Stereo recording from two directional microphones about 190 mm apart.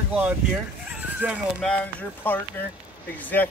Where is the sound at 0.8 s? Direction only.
5° right (ahead or behind).